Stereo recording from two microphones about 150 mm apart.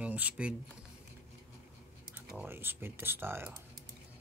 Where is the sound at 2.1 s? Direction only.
15° right (ahead or behind).